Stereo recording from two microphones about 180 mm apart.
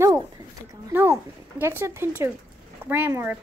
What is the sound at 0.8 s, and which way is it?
Speech, 15° right (ahead or behind).